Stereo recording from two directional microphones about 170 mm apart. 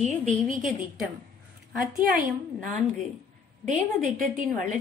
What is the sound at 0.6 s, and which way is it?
Speech, centre (ahead or behind).